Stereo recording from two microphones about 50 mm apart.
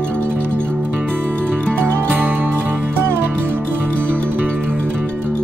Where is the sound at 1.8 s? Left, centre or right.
Right.